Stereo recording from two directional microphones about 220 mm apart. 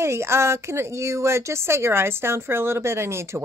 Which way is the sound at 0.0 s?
10° right (ahead or behind).